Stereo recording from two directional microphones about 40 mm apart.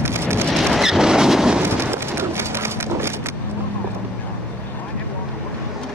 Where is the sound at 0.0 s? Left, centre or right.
Right.